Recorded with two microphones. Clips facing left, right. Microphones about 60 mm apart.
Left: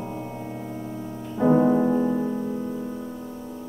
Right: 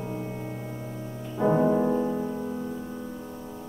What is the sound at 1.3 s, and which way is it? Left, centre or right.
Music, centre.